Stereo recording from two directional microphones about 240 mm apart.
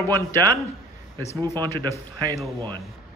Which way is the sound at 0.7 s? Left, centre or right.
Centre.